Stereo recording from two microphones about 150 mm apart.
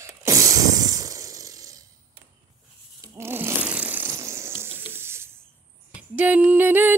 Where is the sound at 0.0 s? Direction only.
20° right (ahead or behind).